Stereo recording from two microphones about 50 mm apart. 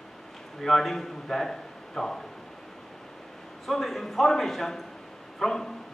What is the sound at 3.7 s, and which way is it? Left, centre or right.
A woman's voice, centre.